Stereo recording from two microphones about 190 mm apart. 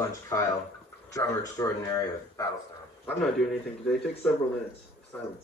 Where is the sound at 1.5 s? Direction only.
20° left (ahead or behind).